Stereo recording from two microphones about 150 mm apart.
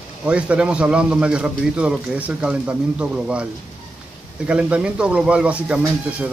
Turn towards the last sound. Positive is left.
turn(degrees=-10)  # may be behind; listen again after turning